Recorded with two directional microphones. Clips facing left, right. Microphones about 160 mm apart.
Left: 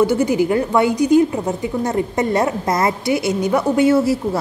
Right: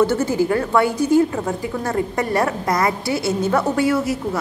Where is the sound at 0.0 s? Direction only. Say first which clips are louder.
Left 2 dB; 15° left (ahead or behind).